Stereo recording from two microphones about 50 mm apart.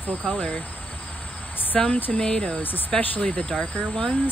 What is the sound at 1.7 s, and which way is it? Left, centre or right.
Speech, centre.